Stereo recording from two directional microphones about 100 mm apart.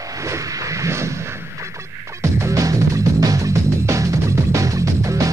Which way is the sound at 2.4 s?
30° right (ahead or behind).